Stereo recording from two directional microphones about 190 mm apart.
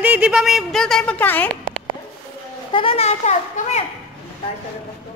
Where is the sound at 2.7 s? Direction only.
30° left (ahead or behind).